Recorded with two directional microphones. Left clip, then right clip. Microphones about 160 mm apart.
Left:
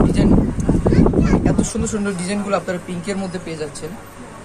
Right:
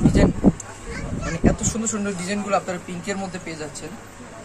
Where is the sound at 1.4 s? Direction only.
5° left (ahead or behind).